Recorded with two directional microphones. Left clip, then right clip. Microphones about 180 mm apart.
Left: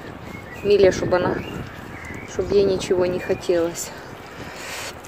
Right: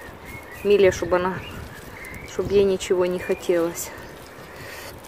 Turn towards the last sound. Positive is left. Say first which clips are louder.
# left 1 dB
turn(degrees=-15)  # may be behind; listen again after turning